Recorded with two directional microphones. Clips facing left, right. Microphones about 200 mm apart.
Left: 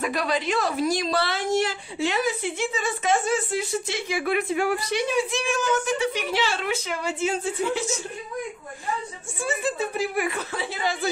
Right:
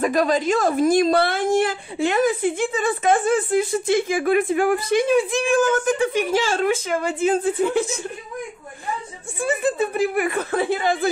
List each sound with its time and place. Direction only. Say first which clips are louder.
0.0 s a woman's voice: right 6 dB; 45° right (ahead or behind)
9.4 s a woman's voice: right 5 dB; 55° right (ahead or behind)